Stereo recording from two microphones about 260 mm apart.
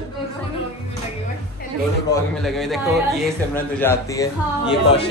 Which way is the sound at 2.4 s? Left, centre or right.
Centre.